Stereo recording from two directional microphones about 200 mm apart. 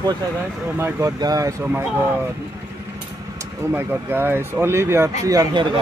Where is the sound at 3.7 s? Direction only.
10° right (ahead or behind).